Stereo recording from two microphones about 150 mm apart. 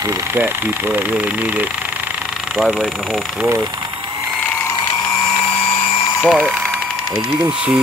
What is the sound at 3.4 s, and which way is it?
Speech, 15° right (ahead or behind).